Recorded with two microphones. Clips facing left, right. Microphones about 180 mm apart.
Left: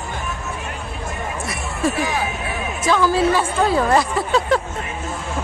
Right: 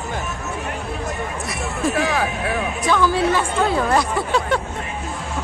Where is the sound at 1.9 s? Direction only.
70° right (ahead or behind).